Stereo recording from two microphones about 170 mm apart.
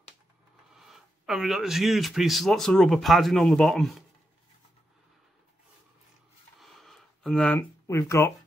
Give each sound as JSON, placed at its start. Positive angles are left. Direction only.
{"t": 0.7, "sound": "speech", "side_deg": 0}
{"t": 6.6, "sound": "a sound", "side_deg": 0}
{"t": 7.8, "sound": "speech", "side_deg": 15}